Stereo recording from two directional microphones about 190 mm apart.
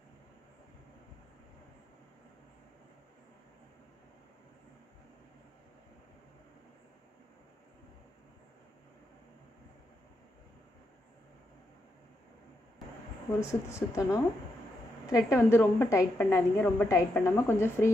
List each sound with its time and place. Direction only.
13.5 s a woman's voice: 15° left (ahead or behind)